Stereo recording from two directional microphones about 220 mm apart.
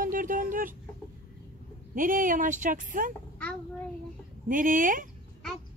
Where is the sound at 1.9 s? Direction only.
40° right (ahead or behind).